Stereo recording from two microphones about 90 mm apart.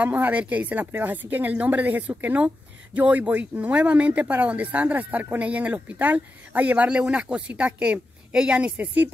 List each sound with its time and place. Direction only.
0.0 s speech: 20° right (ahead or behind)